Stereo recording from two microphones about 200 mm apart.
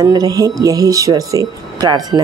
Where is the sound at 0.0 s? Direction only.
20° right (ahead or behind).